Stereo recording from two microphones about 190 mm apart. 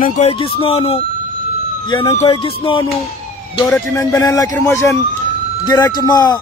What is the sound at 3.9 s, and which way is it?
A man's voice, 15° left (ahead or behind).